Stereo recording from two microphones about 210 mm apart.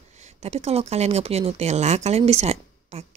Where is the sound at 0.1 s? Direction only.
30° right (ahead or behind).